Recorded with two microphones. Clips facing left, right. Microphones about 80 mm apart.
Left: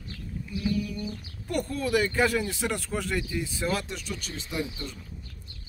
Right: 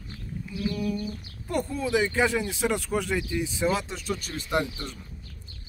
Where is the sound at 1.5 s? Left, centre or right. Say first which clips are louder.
Right 1 dB; right.